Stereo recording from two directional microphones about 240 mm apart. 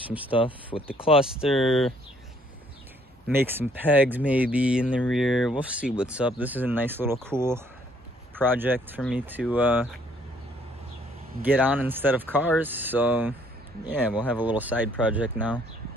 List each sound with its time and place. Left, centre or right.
0.9 s speech: left
1.2 s speech: centre
3.3 s speech: centre
11.4 s speech: centre